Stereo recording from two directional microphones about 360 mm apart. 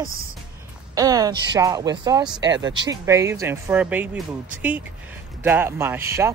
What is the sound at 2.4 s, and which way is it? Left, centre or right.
Speech, right.